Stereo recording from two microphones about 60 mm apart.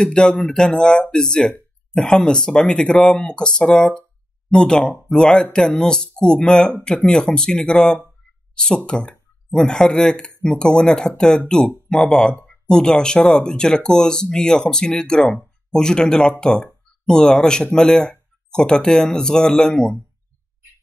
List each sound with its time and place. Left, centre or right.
0.0 s speech: centre